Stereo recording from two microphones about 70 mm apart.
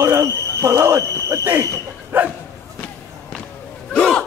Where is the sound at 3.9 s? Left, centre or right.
Centre.